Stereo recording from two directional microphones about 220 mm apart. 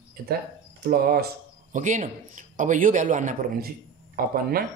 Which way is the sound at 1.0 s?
45° right (ahead or behind).